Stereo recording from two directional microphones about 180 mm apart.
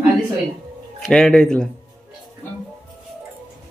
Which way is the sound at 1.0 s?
5° left (ahead or behind).